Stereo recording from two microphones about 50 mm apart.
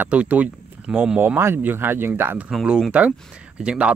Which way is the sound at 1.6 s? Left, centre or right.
Right.